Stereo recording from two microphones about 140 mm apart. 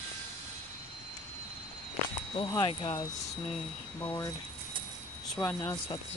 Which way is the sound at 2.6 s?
35° left (ahead or behind).